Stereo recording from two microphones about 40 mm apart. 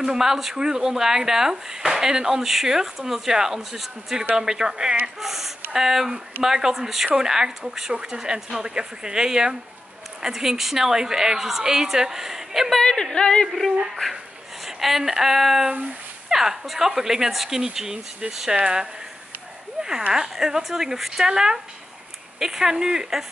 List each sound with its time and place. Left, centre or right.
0.0 s a woman's voice: centre
5.2 s a woman's voice: centre
12.8 s speech: centre
13.5 s a woman's voice: centre
20.1 s a woman's voice: centre